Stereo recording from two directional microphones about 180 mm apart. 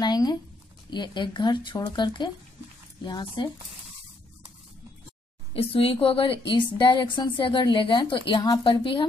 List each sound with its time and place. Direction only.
0.0 s a sound: 25° left (ahead or behind)
0.8 s a woman's voice: 25° left (ahead or behind)
5.5 s a woman's voice: 30° left (ahead or behind)